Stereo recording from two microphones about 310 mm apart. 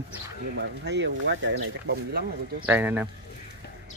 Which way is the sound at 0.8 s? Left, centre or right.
Right.